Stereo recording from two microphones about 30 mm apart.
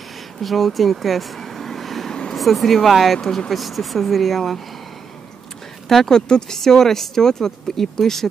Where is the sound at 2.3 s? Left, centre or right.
Centre.